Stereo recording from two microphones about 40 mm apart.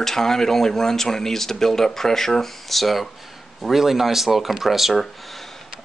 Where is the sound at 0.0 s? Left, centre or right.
Centre.